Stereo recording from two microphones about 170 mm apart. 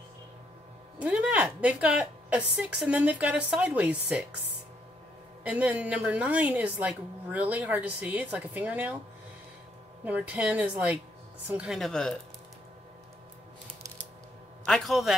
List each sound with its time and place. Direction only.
0.9 s a woman's voice: 5° right (ahead or behind)
5.4 s a woman's voice: 5° right (ahead or behind)
10.0 s a woman's voice: 10° right (ahead or behind)
14.7 s a woman's voice: centre (ahead or behind)